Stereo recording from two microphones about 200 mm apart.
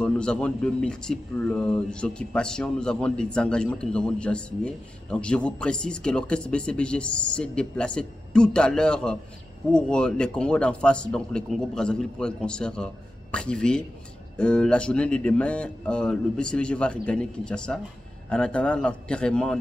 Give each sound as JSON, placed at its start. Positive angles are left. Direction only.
{"t": 0.0, "sound": "speech", "side_deg": 5}